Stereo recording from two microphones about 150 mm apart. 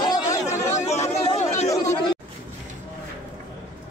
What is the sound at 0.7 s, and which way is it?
Chatter, 50° left (ahead or behind).